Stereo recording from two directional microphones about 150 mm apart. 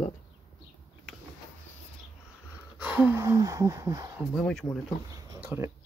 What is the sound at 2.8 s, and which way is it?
Speech, 10° right (ahead or behind).